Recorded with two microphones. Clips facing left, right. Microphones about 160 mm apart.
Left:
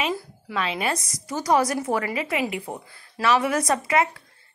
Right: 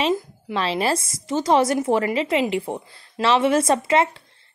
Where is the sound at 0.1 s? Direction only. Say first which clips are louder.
Right 6 dB; 20° right (ahead or behind).